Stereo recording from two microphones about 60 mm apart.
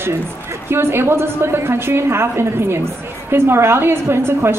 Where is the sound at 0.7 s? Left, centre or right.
Right.